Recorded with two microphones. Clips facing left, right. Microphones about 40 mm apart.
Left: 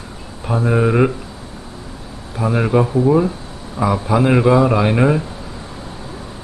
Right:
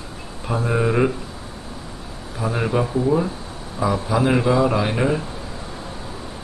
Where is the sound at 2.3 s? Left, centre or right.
Centre.